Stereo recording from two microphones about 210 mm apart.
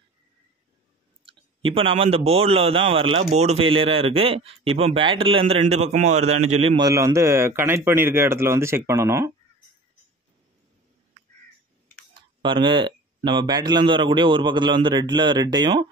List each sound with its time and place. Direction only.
1.2 s a man's voice: 25° right (ahead or behind)
12.1 s speech: 20° right (ahead or behind)